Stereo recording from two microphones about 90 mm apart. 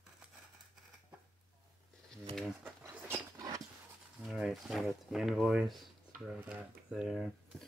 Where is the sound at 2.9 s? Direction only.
20° right (ahead or behind).